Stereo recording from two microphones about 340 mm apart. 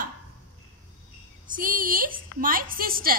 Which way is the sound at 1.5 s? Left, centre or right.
Right.